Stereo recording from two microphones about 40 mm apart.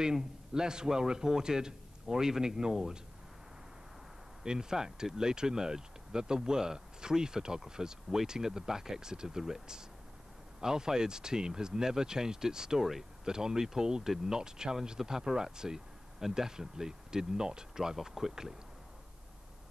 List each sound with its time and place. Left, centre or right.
0.0 s speech: centre
4.4 s speech: centre